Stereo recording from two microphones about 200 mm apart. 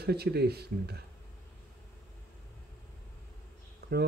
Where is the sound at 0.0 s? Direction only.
55° right (ahead or behind).